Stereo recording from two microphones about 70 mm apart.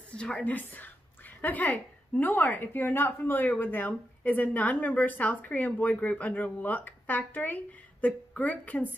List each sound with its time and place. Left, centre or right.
0.1 s a woman's voice: centre